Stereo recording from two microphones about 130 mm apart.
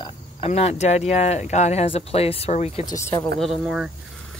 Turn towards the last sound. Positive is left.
turn(degrees=-5)  # may be behind; listen again after turning